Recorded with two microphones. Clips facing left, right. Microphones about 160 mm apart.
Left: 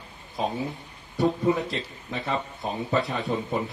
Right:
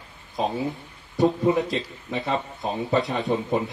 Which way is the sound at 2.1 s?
20° right (ahead or behind).